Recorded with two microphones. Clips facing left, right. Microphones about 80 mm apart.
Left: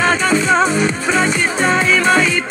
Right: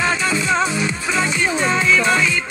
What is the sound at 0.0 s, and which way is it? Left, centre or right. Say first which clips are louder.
Music: left 5 dB; left.